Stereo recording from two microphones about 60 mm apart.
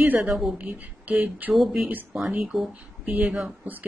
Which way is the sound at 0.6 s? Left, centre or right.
Right.